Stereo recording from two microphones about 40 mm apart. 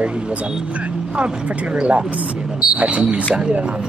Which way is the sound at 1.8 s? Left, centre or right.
Right.